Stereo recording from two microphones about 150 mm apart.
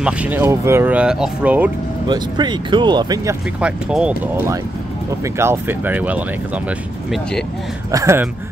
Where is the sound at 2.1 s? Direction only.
30° right (ahead or behind).